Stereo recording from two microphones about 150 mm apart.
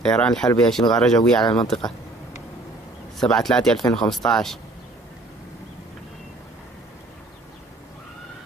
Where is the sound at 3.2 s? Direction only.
5° left (ahead or behind).